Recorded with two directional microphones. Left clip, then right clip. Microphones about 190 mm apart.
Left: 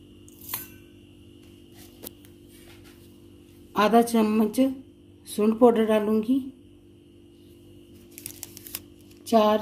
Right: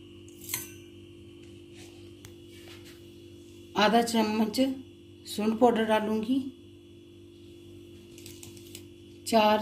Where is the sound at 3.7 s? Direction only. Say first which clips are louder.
Left 4 dB; 45° left (ahead or behind).